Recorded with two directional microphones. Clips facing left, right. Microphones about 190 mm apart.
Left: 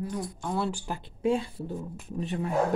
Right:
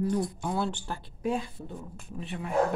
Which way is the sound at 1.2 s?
35° left (ahead or behind).